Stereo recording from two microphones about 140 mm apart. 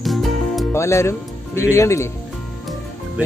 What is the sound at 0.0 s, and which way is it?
Music, centre (ahead or behind).